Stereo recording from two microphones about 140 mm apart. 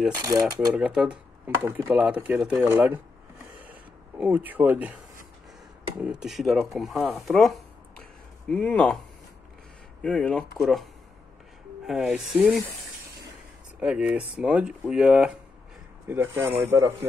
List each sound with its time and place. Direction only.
0.2 s speech: 25° right (ahead or behind)
0.7 s speech: 5° right (ahead or behind)
4.2 s speech: 10° right (ahead or behind)
5.9 s speech: 5° right (ahead or behind)
10.0 s speech: 5° left (ahead or behind)
13.7 s speech: 10° right (ahead or behind)